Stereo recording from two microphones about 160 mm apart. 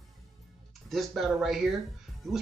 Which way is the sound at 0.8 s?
Centre (ahead or behind).